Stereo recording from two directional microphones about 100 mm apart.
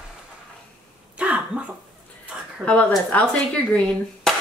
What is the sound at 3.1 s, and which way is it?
Speech, 15° left (ahead or behind).